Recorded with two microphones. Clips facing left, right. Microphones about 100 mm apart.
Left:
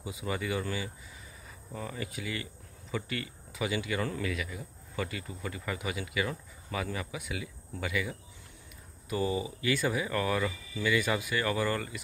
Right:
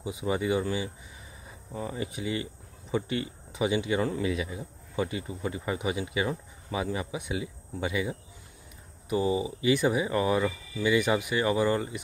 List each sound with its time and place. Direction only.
0.0 s speech: 20° right (ahead or behind)